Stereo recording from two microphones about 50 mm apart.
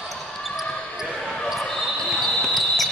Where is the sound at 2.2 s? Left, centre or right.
Centre.